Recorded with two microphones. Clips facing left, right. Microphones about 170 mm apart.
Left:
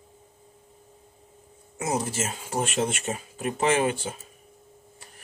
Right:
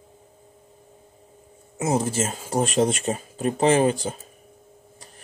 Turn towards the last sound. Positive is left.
turn(degrees=-35)  # may be behind; listen again after turning